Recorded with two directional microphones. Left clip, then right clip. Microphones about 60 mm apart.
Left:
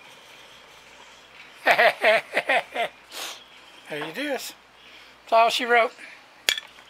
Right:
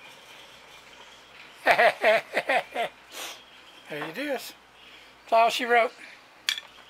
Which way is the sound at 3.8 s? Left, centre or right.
Left.